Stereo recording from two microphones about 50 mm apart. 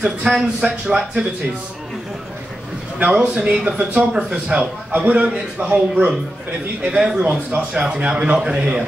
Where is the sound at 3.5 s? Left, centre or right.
Centre.